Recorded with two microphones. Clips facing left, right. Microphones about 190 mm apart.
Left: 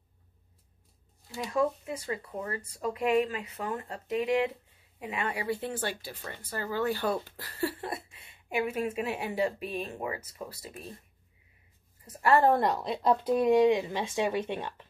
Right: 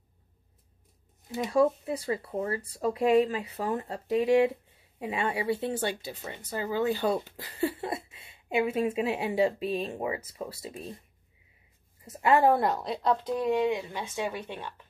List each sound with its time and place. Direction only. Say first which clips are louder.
1.3 s speech: right 5 dB; 25° right (ahead or behind)
12.0 s a woman's voice: right 1 dB; 20° right (ahead or behind); by 14.9 s 20° left (ahead or behind)